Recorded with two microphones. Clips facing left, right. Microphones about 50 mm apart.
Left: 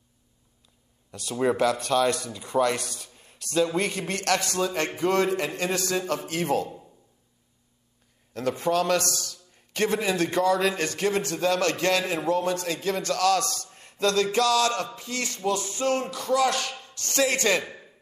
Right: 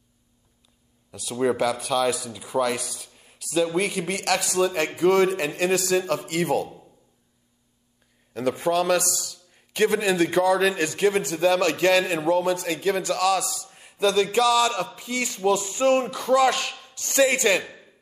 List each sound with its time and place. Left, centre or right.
1.1 s speech: centre
8.3 s a man's voice: centre